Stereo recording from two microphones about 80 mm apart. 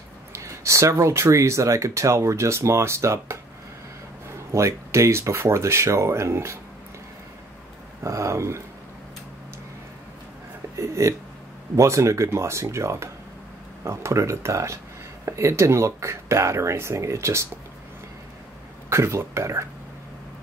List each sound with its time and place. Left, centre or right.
0.3 s speech: right
4.5 s speech: right
8.0 s speech: right
10.8 s a sound: right
11.7 s speech: right
18.9 s speech: right